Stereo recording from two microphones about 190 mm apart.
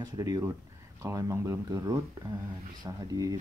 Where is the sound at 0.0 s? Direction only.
20° right (ahead or behind).